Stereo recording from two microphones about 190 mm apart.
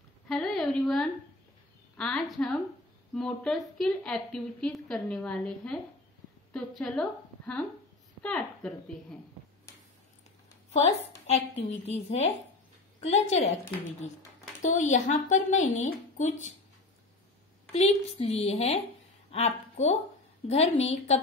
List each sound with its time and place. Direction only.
0.3 s a sound: centre (ahead or behind)
2.0 s a woman's voice: 5° left (ahead or behind)
11.2 s a woman's voice: 35° left (ahead or behind)
14.6 s a woman's voice: 40° left (ahead or behind)
17.7 s a woman's voice: 35° left (ahead or behind)